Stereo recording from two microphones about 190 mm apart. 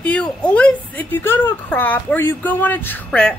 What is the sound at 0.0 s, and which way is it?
A woman's voice, 5° left (ahead or behind).